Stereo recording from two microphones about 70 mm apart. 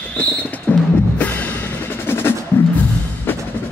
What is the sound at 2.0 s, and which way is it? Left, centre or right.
Music, left.